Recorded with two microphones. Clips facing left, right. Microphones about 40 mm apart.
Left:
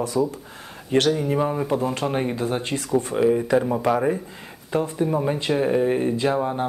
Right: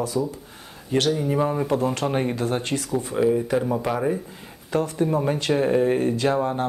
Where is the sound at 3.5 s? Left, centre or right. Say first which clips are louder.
Left 3 dB; left.